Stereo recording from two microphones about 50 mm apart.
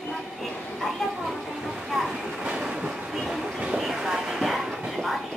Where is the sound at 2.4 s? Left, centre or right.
Centre.